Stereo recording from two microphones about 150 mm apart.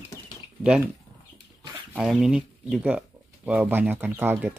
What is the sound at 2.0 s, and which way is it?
Speech, 5° right (ahead or behind).